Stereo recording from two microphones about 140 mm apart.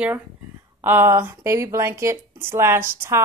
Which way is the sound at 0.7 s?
15° right (ahead or behind).